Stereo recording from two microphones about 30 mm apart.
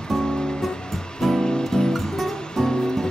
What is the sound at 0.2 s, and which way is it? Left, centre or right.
Music, left.